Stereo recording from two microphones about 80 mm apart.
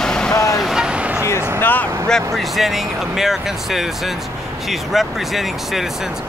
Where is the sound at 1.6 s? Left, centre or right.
Left.